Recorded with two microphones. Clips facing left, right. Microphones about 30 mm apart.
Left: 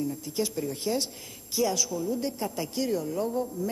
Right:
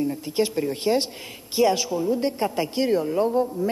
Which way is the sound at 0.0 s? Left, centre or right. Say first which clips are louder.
Right 6 dB; right.